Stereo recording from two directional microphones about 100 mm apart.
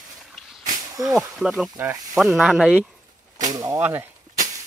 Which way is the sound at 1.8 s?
25° right (ahead or behind).